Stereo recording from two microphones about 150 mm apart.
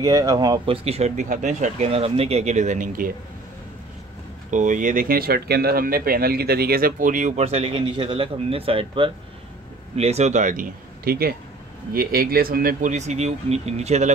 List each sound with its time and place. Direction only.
0.0 s speech: 25° right (ahead or behind)
0.7 s speech: 40° right (ahead or behind); by 3.1 s 60° right (ahead or behind)
4.5 s speech: 55° right (ahead or behind); by 11.3 s 90° right
11.9 s speech: 75° right (ahead or behind)
12.9 s speech: 50° right (ahead or behind)